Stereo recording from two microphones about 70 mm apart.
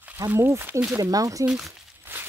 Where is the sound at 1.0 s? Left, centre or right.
Right.